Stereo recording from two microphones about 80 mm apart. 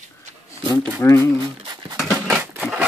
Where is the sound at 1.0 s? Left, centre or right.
Left.